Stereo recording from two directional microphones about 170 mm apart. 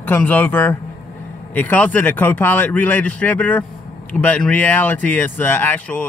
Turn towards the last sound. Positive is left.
turn(degrees=10)  # may be behind; listen again after turning